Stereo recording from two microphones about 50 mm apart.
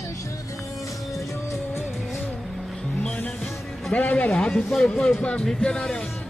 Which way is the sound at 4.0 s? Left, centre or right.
Left.